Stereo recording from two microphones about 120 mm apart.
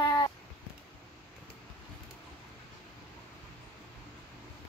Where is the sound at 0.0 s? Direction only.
35° left (ahead or behind).